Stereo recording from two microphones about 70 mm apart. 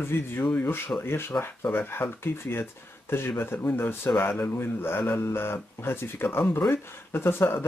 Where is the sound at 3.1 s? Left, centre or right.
Left.